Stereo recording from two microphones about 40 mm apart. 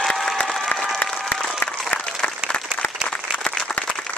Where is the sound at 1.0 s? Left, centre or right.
Centre.